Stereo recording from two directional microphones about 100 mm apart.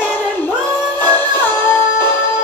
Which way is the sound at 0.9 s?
20° left (ahead or behind).